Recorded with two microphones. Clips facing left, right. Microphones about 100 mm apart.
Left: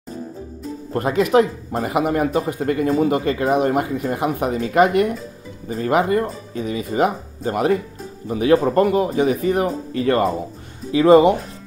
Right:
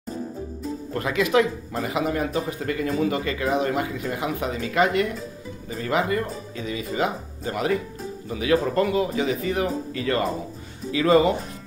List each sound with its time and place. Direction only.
0.9 s speech: 45° left (ahead or behind)
10.9 s speech: 25° left (ahead or behind)